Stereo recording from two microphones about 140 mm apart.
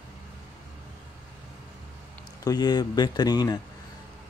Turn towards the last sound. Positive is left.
turn(degrees=30)  # may be behind; listen again after turning